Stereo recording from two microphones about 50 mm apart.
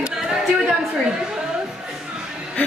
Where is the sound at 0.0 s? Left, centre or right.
Centre.